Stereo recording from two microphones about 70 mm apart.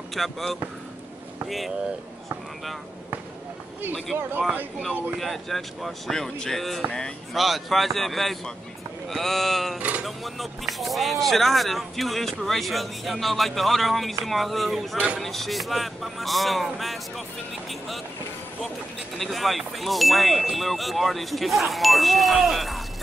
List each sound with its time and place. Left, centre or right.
0.1 s speech: centre
4.1 s speech: right
5.2 s speech: centre
9.8 s speech: right
10.0 s speech: centre
19.1 s speech: centre